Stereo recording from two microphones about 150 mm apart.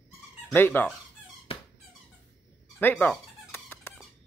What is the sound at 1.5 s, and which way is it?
Squeak, 40° left (ahead or behind).